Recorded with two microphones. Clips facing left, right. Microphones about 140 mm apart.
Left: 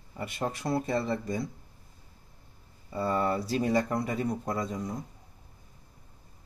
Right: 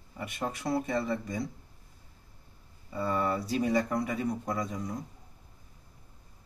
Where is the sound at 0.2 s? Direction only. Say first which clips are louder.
Left 2 dB; 30° left (ahead or behind).